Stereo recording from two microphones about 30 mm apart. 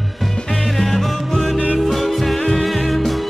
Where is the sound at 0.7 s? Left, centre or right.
Centre.